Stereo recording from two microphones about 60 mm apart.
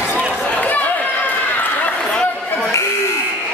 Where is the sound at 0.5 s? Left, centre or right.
Left.